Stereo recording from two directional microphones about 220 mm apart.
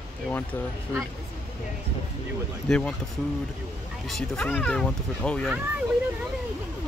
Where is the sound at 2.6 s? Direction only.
5° left (ahead or behind).